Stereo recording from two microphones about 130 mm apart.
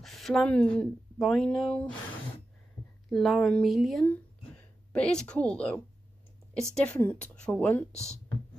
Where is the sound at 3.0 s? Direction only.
Centre (ahead or behind).